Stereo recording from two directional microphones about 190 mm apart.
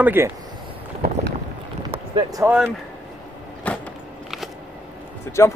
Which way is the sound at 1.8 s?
25° right (ahead or behind).